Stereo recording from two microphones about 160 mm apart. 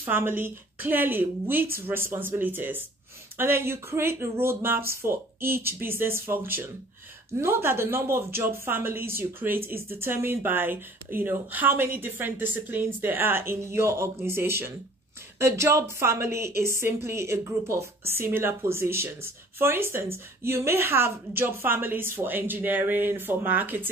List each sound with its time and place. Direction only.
0.0 s a woman's voice: 15° right (ahead or behind)